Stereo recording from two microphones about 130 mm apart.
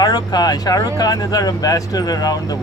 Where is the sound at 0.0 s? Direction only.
30° left (ahead or behind).